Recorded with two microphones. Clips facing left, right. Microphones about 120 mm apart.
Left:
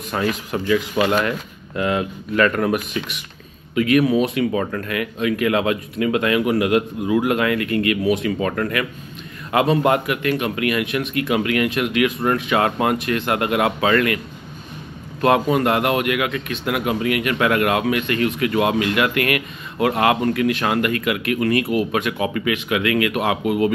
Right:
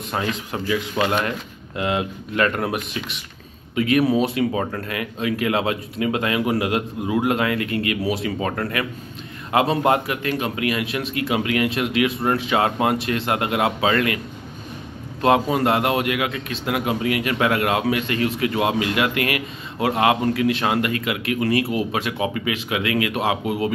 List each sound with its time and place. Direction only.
0.1 s speech: 25° right (ahead or behind)
1.8 s speech: 25° right (ahead or behind)
15.2 s speech: 25° right (ahead or behind)